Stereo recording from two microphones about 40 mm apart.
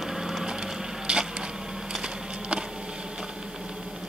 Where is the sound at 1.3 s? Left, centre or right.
Right.